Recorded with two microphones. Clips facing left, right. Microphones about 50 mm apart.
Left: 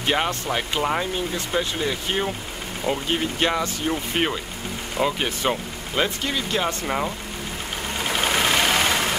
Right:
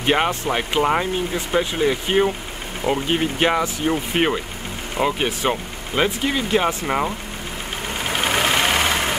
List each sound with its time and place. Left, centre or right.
0.0 s speech: centre
8.0 s vehicle: centre